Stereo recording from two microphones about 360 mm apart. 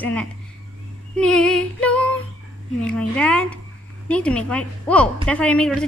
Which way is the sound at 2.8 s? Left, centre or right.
Centre.